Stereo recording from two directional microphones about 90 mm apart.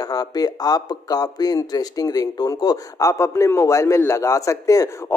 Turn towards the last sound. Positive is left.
turn(degrees=35)  # may be behind; listen again after turning